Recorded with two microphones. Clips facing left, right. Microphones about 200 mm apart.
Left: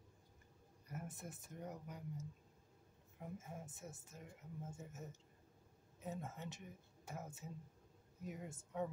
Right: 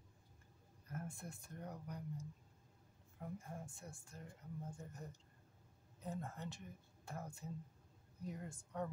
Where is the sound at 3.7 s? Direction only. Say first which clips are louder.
Left 2 dB; 20° left (ahead or behind).